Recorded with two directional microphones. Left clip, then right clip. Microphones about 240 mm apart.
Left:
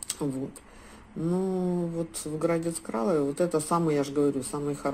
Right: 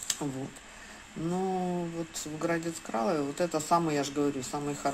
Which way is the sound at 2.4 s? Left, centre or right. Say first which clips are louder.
Left 4 dB; centre.